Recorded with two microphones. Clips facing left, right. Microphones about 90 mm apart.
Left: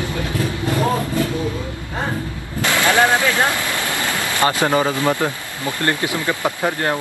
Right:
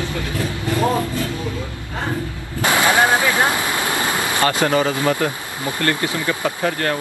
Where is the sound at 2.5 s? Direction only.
15° right (ahead or behind).